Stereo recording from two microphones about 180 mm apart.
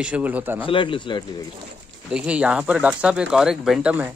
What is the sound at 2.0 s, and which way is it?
Speech, 5° right (ahead or behind).